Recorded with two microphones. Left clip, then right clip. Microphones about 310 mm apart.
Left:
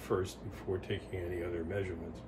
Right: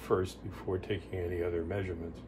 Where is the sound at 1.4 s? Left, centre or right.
Centre.